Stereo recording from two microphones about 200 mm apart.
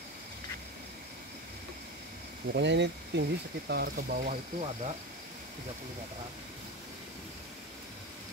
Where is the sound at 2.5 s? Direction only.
60° right (ahead or behind); by 4.4 s 45° right (ahead or behind).